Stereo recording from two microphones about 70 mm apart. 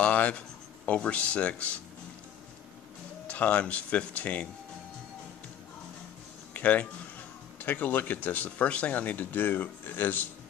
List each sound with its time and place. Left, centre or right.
0.0 s a sound: centre
0.8 s speech: centre
3.3 s speech: centre
6.5 s speech: left